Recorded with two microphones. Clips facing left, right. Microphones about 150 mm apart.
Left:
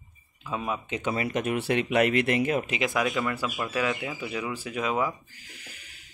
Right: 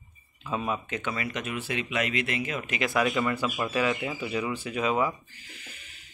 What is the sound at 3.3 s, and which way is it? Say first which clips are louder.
Speech: right 1 dB; centre (ahead or behind).